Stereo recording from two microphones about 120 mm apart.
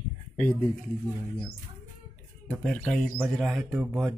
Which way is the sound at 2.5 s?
10° left (ahead or behind).